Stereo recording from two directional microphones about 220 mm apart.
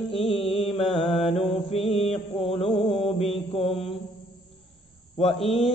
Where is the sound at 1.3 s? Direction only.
25° left (ahead or behind).